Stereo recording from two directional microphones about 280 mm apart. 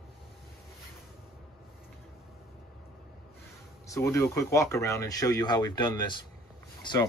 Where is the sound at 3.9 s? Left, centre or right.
Centre.